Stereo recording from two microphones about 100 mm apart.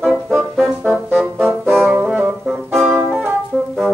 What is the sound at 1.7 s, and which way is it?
Brass instrument, 5° right (ahead or behind).